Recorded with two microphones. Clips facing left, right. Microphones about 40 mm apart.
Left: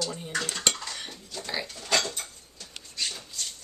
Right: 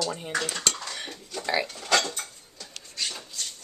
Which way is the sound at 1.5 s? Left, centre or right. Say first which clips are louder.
Right 5 dB; right.